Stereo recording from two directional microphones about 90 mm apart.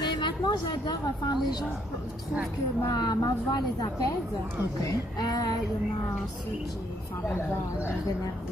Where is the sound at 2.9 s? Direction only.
50° left (ahead or behind).